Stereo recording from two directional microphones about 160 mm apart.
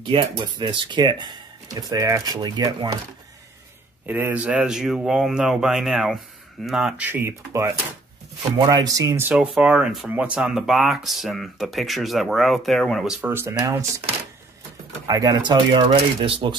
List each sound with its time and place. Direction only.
0.0 s speech: 30° right (ahead or behind)
4.0 s speech: 10° right (ahead or behind)
9.3 s speech: 5° right (ahead or behind)
13.2 s speech: 15° right (ahead or behind)
15.0 s speech: 20° right (ahead or behind)